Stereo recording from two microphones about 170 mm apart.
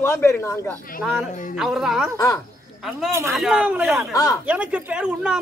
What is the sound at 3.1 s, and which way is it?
Speech, 15° right (ahead or behind).